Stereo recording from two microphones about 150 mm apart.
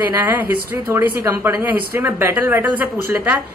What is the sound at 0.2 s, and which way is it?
Speech, 10° right (ahead or behind).